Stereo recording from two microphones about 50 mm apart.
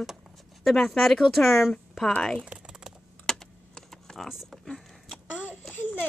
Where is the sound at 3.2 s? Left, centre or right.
Centre.